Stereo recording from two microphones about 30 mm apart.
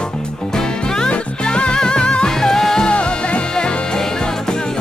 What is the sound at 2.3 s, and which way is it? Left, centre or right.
Music, centre.